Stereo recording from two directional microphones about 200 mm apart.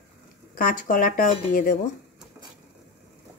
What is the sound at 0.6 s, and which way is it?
Speech, 40° left (ahead or behind).